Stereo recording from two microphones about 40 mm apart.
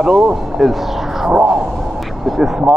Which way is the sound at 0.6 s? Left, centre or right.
Centre.